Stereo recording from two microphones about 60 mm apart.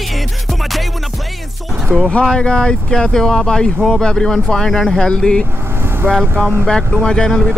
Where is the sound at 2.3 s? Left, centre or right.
Centre.